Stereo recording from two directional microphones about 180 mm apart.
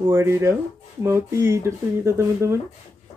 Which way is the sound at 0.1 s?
15° right (ahead or behind).